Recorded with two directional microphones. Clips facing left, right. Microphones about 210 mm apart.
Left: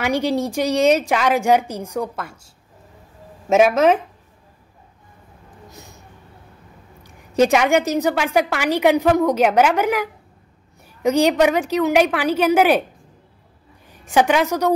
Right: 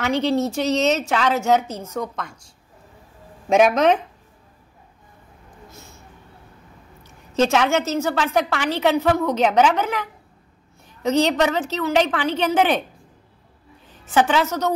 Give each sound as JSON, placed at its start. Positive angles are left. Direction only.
{"t": 0.0, "sound": "a woman's voice", "side_deg": 10}
{"t": 5.7, "sound": "vehicle", "side_deg": 15}
{"t": 7.0, "sound": "a woman's voice", "side_deg": 15}
{"t": 13.8, "sound": "a woman's voice", "side_deg": 15}